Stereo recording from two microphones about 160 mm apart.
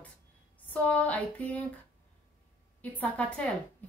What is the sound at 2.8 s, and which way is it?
Speech, 10° left (ahead or behind).